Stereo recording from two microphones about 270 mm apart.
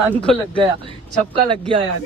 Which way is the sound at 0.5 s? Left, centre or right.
Centre.